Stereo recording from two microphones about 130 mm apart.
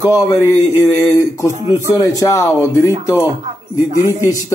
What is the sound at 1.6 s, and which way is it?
Speech, 20° right (ahead or behind).